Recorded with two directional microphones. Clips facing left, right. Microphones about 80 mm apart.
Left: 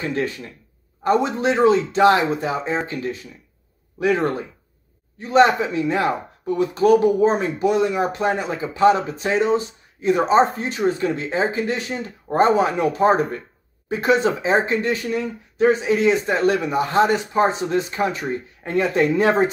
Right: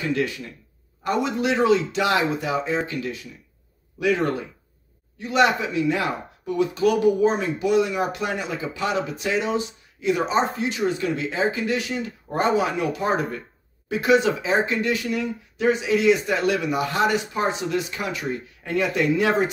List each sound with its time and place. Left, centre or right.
1.0 s speech: left